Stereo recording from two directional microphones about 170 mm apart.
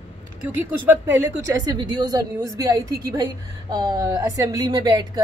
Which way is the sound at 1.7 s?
25° right (ahead or behind).